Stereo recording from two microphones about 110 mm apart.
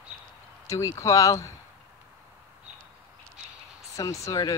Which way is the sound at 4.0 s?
30° left (ahead or behind).